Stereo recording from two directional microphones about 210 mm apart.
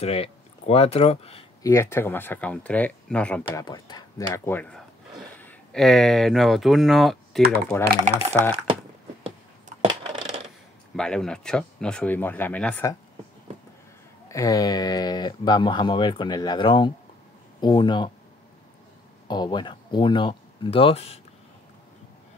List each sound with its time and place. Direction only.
0.0 s speech: 30° left (ahead or behind)
1.6 s speech: 15° left (ahead or behind)
3.6 s speech: 20° left (ahead or behind); by 7.4 s centre (ahead or behind)
7.7 s speech: 10° left (ahead or behind)
9.8 s coin: 25° right (ahead or behind)
11.0 s speech: 5° left (ahead or behind)
14.3 s speech: 15° left (ahead or behind)
19.2 s speech: 20° left (ahead or behind)